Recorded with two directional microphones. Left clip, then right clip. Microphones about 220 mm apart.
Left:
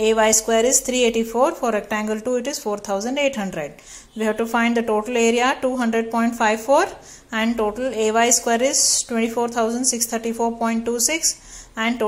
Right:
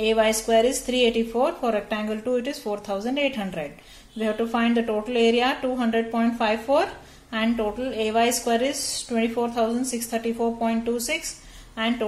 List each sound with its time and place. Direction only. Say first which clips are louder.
0.0 s speech: left 4 dB; 20° left (ahead or behind)